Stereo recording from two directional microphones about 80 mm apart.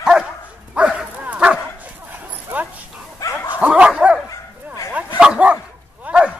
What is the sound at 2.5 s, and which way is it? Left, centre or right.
Dog, right.